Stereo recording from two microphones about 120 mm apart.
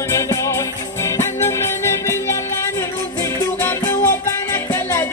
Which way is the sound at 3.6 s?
20° left (ahead or behind).